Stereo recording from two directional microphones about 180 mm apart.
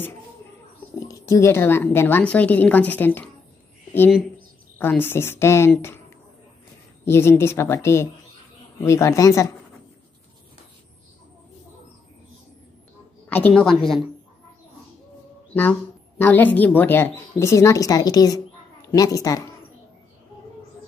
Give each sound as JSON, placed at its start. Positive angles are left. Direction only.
{"t": 0.9, "sound": "speech", "side_deg": 15}
{"t": 4.7, "sound": "speech", "side_deg": 10}
{"t": 7.1, "sound": "speech", "side_deg": 15}
{"t": 13.3, "sound": "a woman's voice", "side_deg": 5}
{"t": 16.2, "sound": "a woman's voice", "side_deg": 10}